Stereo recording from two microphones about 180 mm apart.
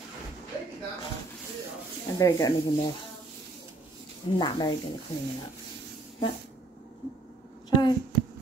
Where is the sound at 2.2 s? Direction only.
20° left (ahead or behind).